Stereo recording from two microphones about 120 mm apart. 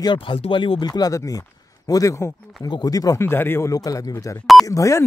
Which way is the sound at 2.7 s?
35° left (ahead or behind).